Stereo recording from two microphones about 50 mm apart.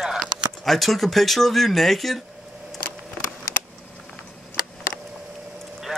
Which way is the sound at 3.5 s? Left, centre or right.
Left.